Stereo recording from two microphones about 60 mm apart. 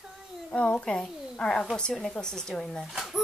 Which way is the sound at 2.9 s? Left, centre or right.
Centre.